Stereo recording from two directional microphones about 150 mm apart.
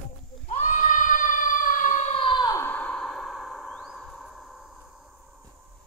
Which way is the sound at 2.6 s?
10° left (ahead or behind).